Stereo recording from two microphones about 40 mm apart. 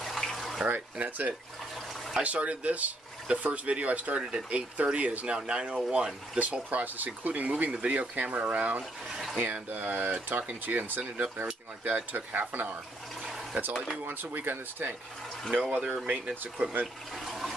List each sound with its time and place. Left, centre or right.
0.0 s bathtub: centre
0.9 s speech: right
6.3 s speech: right
7.7 s speech: right
9.1 s a sound: centre
9.4 s speech: right
14.0 s speech: right
15.5 s speech: right
16.8 s water: centre